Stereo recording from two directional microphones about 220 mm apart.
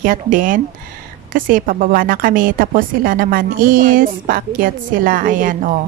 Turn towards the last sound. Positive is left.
turn(degrees=-35)  # may be behind; listen again after turning